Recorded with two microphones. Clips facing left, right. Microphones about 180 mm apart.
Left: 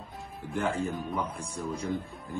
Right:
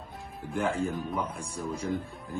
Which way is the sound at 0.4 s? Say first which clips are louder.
Right 1 dB; centre (ahead or behind).